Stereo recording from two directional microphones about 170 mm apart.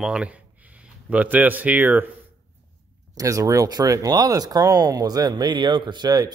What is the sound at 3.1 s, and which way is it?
Speech, 20° right (ahead or behind).